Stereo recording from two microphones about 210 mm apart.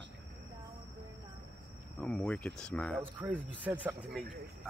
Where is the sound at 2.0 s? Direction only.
5° left (ahead or behind).